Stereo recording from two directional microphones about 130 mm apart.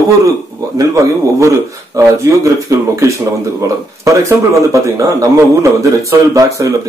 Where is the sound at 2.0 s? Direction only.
25° right (ahead or behind).